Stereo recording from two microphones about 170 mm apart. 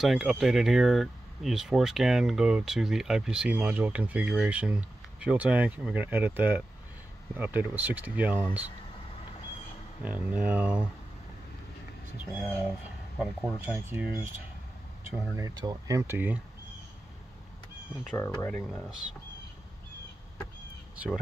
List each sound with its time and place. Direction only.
0.0 s speech: 5° right (ahead or behind)
10.0 s speech: 10° right (ahead or behind)
13.2 s speech: 10° right (ahead or behind)
15.3 s speech: 20° right (ahead or behind)
18.1 s speech: 15° left (ahead or behind)
20.9 s speech: 10° right (ahead or behind)